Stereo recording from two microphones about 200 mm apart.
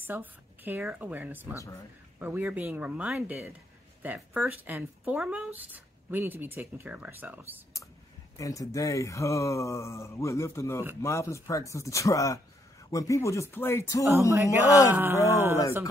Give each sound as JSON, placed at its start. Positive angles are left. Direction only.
{"t": 0.0, "sound": "speech", "side_deg": -10}
{"t": 1.5, "sound": "speech", "side_deg": 15}
{"t": 2.1, "sound": "speech", "side_deg": -10}
{"t": 8.4, "sound": "speech", "side_deg": 15}
{"t": 14.3, "sound": "speech", "side_deg": -10}